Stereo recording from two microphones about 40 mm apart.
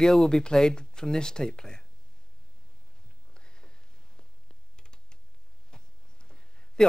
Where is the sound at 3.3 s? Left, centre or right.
Left.